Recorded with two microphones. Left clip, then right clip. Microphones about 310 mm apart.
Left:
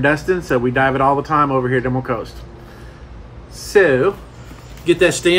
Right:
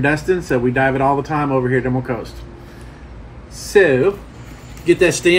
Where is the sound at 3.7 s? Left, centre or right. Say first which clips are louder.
Even; centre.